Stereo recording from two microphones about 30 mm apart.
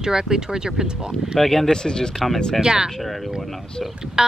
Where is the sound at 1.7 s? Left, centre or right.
Left.